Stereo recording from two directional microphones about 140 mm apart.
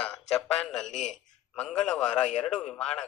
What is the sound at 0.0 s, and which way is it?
A man's voice, 5° left (ahead or behind).